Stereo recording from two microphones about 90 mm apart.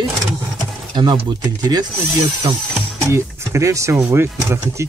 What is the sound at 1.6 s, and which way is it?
Speech, 45° right (ahead or behind).